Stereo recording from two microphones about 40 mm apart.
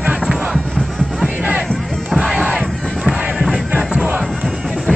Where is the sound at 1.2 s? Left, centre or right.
Right.